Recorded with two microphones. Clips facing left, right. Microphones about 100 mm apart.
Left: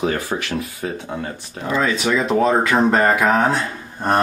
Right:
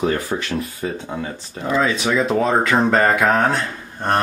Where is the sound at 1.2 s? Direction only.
Centre (ahead or behind).